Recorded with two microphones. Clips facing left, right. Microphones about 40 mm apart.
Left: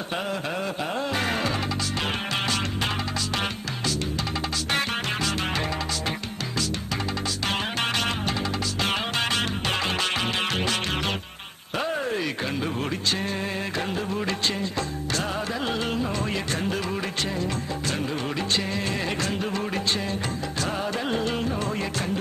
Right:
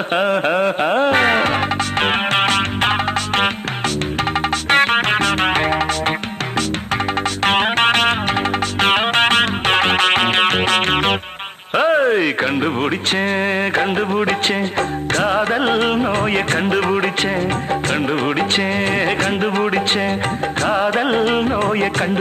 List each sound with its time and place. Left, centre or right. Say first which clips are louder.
0.1 s music: right 13 dB; right
4.6 s music: right 13 dB; right
7.4 s music: right 13 dB; right
11.7 s speech: right 13 dB; right
18.5 s music: right 9 dB; right